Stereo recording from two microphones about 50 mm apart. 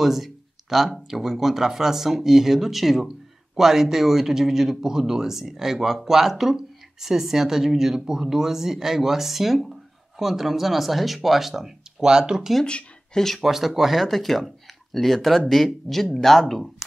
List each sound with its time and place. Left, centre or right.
0.0 s speech: centre
12.6 s a sound: left
13.2 s speech: centre